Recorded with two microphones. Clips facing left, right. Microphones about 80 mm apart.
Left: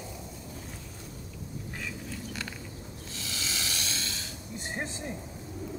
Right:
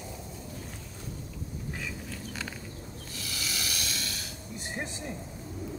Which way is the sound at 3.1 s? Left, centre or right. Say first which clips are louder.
Even; left.